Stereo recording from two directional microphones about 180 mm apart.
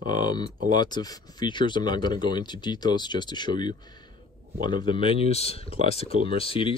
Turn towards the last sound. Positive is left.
turn(degrees=30)  # may be behind; listen again after turning